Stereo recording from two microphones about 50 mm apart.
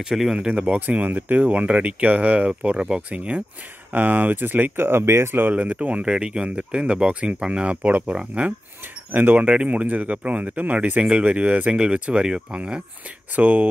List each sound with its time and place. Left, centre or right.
0.0 s speech: centre
0.7 s speech: right
3.9 s speech: right
5.5 s speech: right
11.7 s speech: centre